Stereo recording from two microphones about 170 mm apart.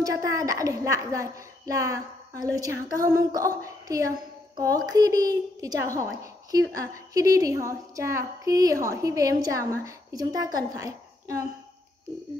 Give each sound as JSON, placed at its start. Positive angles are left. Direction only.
{"t": 0.0, "sound": "a woman's voice", "side_deg": -20}